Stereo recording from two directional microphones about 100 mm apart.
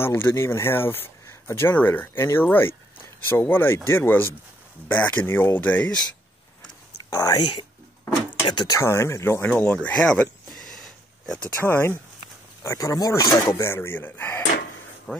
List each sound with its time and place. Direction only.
0.0 s speech: 25° left (ahead or behind)
7.1 s speech: 40° left (ahead or behind)
8.7 s speech: 30° left (ahead or behind)
9.5 s speech: 10° left (ahead or behind)
10.5 s a sound: 5° left (ahead or behind)
11.5 s speech: 20° left (ahead or behind)
12.6 s speech: 35° left (ahead or behind)
15.1 s speech: 5° left (ahead or behind)